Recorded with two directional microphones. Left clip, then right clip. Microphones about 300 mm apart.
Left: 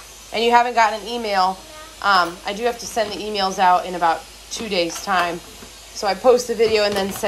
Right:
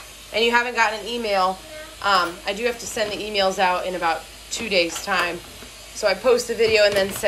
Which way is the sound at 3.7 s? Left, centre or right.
Centre.